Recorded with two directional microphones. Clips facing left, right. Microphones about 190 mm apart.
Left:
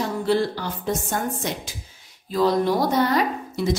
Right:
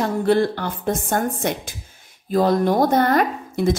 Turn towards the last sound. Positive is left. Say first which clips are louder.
# right 3 dB
turn(degrees=-50)  # may be behind; listen again after turning